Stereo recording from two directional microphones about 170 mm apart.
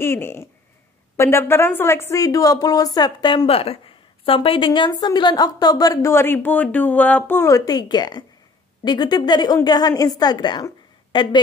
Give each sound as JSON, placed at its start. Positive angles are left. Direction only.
{"t": 0.0, "sound": "speech", "side_deg": 15}